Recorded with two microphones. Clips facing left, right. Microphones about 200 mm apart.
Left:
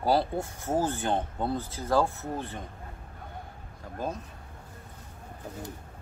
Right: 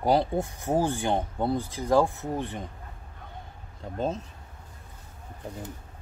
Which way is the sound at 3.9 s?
25° right (ahead or behind).